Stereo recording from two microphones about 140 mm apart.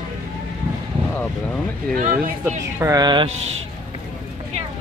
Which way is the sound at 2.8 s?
25° right (ahead or behind).